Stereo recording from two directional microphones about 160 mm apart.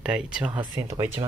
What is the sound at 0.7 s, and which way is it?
Speech, 20° right (ahead or behind).